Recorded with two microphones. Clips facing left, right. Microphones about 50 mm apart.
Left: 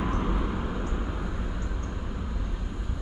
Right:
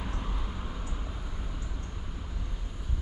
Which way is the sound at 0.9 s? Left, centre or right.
Left.